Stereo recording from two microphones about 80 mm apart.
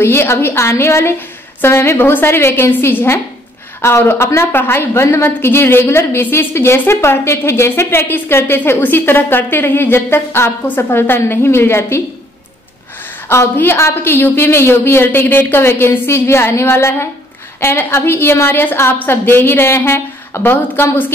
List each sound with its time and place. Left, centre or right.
0.0 s a woman's voice: left
13.3 s a woman's voice: left